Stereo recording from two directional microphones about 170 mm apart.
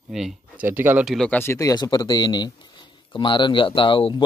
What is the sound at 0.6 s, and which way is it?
Speech, 10° right (ahead or behind).